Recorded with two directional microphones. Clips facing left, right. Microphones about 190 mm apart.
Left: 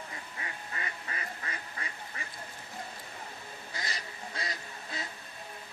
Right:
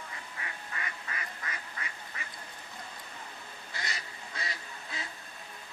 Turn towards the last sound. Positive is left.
turn(degrees=35)  # may be behind; listen again after turning